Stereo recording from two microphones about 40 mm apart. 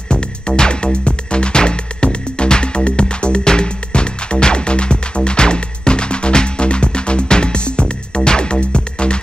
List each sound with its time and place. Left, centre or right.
0.1 s music: left